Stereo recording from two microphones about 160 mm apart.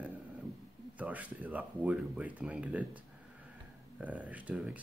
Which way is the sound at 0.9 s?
10° right (ahead or behind).